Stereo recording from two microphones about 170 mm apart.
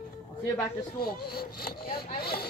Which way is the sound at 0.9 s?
65° left (ahead or behind).